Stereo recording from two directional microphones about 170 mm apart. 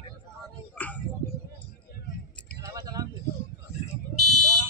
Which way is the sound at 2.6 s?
20° right (ahead or behind).